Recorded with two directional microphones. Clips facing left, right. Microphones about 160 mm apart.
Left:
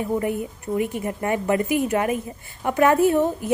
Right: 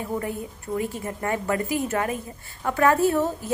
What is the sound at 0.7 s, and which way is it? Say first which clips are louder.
A woman's voice: left 4 dB; 15° left (ahead or behind).